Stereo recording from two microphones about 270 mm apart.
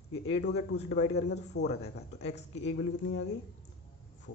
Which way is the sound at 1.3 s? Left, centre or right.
Left.